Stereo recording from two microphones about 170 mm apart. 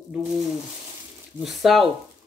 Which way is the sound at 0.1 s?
5° right (ahead or behind).